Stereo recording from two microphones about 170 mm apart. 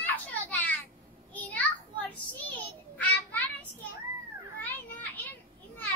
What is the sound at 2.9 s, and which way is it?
Child singing, 10° left (ahead or behind).